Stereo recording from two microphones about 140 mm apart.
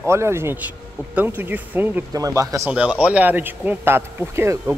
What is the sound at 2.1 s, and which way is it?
Speech, 25° right (ahead or behind).